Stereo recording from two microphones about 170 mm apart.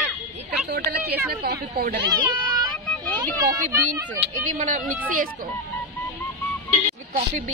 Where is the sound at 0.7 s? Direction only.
65° right (ahead or behind).